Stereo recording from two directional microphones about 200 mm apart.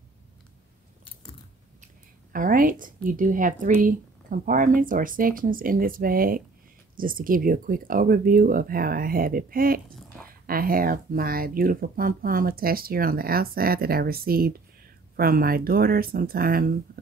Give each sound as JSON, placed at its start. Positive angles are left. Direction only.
{"t": 2.3, "sound": "speech", "side_deg": -45}